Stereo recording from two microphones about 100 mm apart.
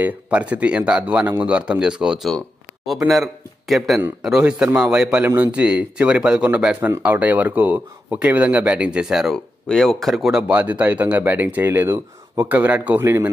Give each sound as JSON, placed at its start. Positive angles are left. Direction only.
{"t": 0.0, "sound": "speech", "side_deg": -15}
{"t": 5.2, "sound": "speech", "side_deg": -20}
{"t": 10.5, "sound": "speech", "side_deg": -15}